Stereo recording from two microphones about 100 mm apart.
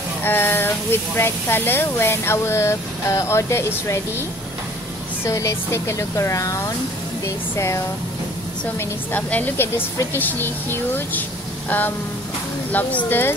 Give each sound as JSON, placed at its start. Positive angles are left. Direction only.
{"t": 0.2, "sound": "speech", "side_deg": 20}
{"t": 5.2, "sound": "speech", "side_deg": 30}
{"t": 8.7, "sound": "speech", "side_deg": 15}
{"t": 12.7, "sound": "speech", "side_deg": 20}